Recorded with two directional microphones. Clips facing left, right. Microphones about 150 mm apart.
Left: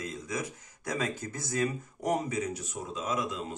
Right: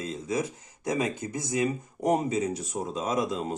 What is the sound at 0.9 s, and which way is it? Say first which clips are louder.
Speech: right 3 dB; 20° right (ahead or behind).